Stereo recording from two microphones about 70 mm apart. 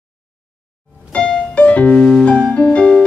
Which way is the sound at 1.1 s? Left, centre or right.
Centre.